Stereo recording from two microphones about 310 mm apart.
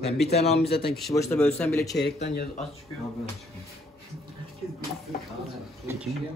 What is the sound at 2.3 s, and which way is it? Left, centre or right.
Speech, left.